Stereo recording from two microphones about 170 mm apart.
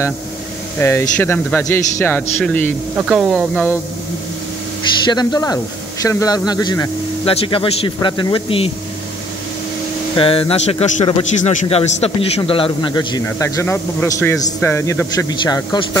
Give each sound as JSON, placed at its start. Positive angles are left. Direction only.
{"t": 0.7, "sound": "a man's voice", "side_deg": 15}
{"t": 3.0, "sound": "speech", "side_deg": -5}
{"t": 5.0, "sound": "a man's voice", "side_deg": 25}
{"t": 10.1, "sound": "a man's voice", "side_deg": 30}